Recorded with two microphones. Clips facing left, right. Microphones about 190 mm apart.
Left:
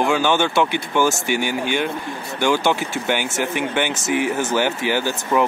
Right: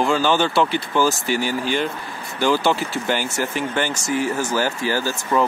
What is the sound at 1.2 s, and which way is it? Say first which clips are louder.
Speech: even; 60° left (ahead or behind).